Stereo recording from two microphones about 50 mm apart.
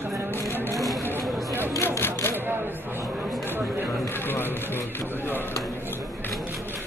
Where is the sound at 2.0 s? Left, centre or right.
Left.